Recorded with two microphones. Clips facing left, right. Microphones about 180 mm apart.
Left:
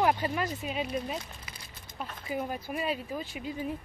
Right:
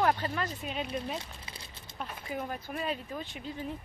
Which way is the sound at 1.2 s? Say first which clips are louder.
Even; 25° right (ahead or behind).